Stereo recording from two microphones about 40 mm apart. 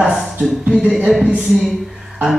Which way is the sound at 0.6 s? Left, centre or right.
Centre.